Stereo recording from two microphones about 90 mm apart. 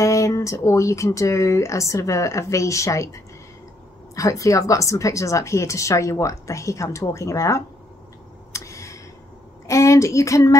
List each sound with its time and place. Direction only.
0.0 s speech: 35° left (ahead or behind)
8.5 s a sound: 35° left (ahead or behind)
9.7 s speech: 35° left (ahead or behind)